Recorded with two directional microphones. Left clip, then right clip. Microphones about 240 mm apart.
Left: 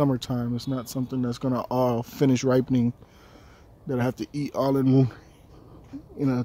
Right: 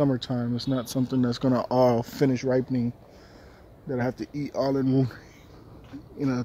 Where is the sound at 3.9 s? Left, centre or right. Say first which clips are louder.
Left 1 dB; centre.